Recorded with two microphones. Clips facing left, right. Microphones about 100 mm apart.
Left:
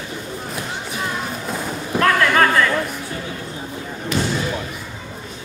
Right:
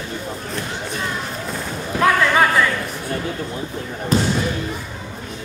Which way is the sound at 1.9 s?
10° right (ahead or behind).